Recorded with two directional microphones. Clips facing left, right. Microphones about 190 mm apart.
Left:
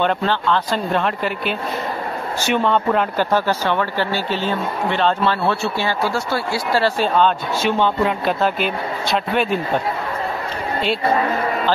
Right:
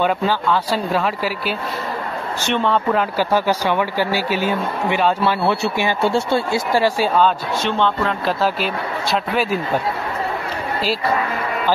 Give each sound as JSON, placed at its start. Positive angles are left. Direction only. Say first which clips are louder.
{"t": 0.0, "sound": "speech", "louder": "right 1 dB", "side_deg": -10}
{"t": 7.6, "sound": "speech", "louder": "left 2 dB", "side_deg": 10}
{"t": 8.4, "sound": "speech", "louder": "even", "side_deg": 0}